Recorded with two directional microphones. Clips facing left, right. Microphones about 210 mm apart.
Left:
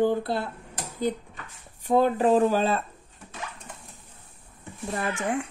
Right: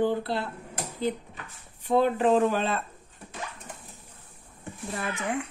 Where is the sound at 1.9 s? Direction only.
40° left (ahead or behind).